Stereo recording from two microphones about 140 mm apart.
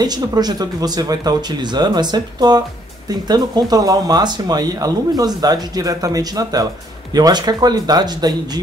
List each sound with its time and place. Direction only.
0.0 s speech: 30° right (ahead or behind)